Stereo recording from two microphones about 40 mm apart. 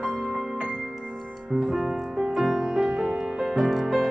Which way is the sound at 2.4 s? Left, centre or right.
Centre.